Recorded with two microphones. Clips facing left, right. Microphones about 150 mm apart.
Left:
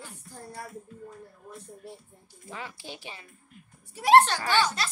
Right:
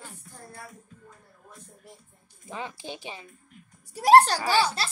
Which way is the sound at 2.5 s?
20° right (ahead or behind).